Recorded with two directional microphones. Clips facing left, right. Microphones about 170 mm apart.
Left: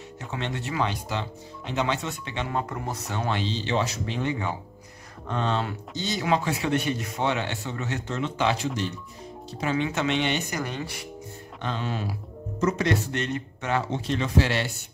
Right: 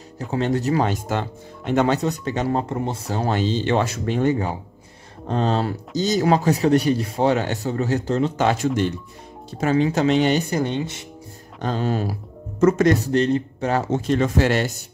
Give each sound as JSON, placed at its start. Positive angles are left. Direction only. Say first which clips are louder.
{"t": 0.2, "sound": "speech", "louder": "right 10 dB", "side_deg": -40}
{"t": 9.6, "sound": "speech", "louder": "right 7 dB", "side_deg": -40}
{"t": 10.6, "sound": "speech", "louder": "right 8 dB", "side_deg": -25}
{"t": 11.6, "sound": "speech", "louder": "right 7 dB", "side_deg": -40}